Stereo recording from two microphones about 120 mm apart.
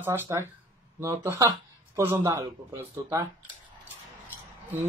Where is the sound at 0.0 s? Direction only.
20° right (ahead or behind).